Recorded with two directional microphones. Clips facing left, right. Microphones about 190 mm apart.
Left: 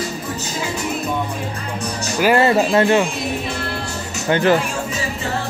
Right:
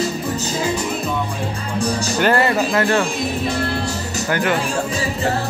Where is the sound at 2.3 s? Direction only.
25° left (ahead or behind).